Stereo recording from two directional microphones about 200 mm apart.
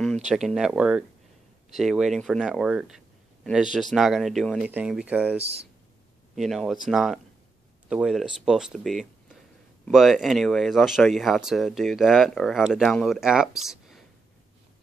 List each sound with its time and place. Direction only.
0.0 s speech: centre (ahead or behind)
5.4 s speech: 30° right (ahead or behind)
6.3 s speech: centre (ahead or behind)